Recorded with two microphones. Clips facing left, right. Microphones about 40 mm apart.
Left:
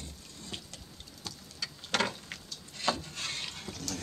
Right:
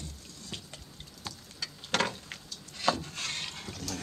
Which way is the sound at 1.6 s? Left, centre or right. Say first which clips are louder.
Right 1 dB; centre.